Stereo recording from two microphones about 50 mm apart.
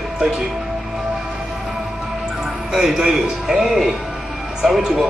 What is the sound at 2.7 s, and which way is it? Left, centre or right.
A man's voice, centre.